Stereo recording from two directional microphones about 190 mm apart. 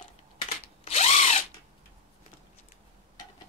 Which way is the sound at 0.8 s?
35° left (ahead or behind).